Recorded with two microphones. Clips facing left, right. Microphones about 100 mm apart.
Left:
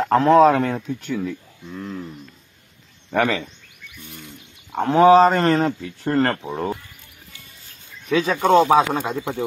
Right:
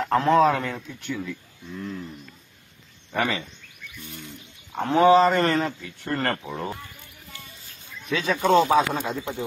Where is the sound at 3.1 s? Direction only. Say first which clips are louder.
Left 6 dB; 70° left (ahead or behind).